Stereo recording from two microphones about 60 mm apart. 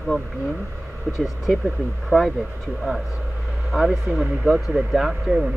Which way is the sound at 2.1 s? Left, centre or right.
Left.